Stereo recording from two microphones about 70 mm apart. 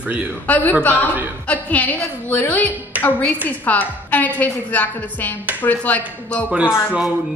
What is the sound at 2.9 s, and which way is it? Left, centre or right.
Music, right.